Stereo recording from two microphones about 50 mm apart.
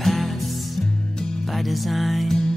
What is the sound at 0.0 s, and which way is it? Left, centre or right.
Music, centre.